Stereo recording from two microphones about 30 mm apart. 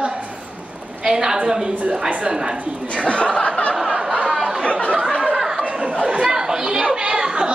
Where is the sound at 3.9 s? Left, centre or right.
Right.